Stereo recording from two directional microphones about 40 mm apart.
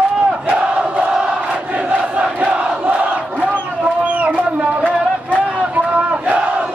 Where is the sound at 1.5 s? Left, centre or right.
Right.